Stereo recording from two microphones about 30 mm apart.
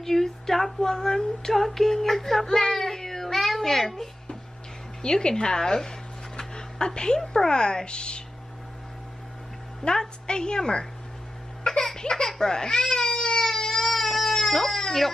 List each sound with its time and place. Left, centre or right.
0.0 s a sound: centre
2.4 s child singing: centre
3.6 s a sound: centre
5.0 s speech: left
9.8 s speech: left
11.6 s baby cry: left
13.8 s baby cry: centre
14.3 s baby cry: centre